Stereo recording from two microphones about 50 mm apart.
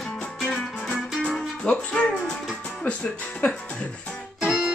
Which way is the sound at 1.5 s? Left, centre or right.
Centre.